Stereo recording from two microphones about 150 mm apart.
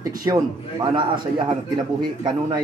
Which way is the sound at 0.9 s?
30° right (ahead or behind).